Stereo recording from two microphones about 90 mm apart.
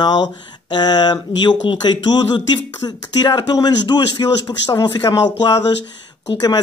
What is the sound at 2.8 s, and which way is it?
Speech, 50° left (ahead or behind).